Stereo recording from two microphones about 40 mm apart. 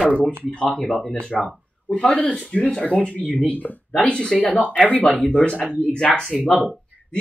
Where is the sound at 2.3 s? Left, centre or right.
Left.